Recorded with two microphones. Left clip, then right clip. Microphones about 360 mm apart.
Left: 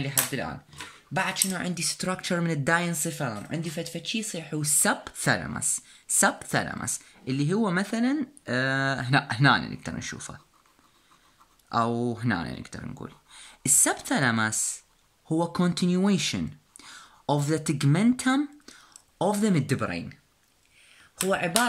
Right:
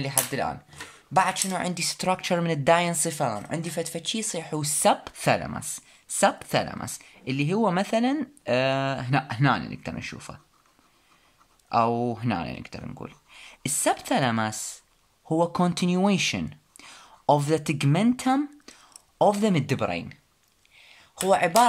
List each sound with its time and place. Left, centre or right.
0.0 s speech: centre
11.7 s speech: centre
14.5 s speech: centre
15.2 s speech: centre
20.7 s a sound: centre
21.3 s speech: centre